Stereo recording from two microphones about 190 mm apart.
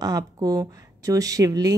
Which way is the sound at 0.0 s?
20° right (ahead or behind).